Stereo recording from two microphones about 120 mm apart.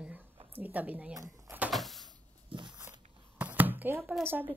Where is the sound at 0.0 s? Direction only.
10° right (ahead or behind).